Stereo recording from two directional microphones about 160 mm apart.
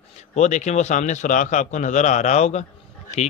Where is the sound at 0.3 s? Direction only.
45° left (ahead or behind).